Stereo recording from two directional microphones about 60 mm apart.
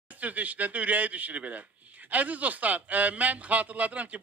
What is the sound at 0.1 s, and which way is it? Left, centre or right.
Speech, right.